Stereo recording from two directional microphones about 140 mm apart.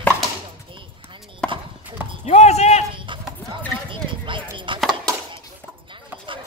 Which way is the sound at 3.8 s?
35° right (ahead or behind).